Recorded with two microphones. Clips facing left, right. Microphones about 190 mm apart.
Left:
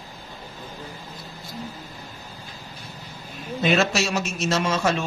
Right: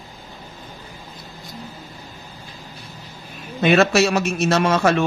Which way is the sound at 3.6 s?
65° right (ahead or behind).